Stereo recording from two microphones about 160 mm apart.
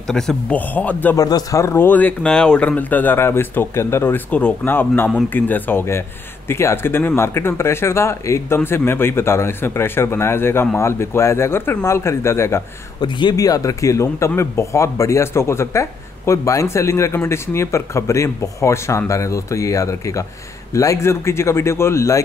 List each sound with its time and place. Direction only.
0.1 s speech: 5° left (ahead or behind)
1.1 s speech: 20° left (ahead or behind)
13.0 s speech: 25° left (ahead or behind)